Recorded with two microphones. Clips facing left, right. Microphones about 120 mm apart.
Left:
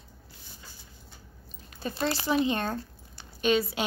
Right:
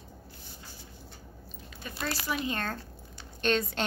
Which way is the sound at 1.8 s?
30° left (ahead or behind).